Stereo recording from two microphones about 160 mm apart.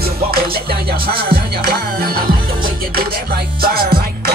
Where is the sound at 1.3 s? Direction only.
70° right (ahead or behind).